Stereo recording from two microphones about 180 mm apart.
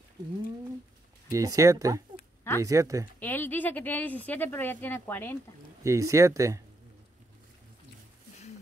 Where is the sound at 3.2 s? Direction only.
10° left (ahead or behind).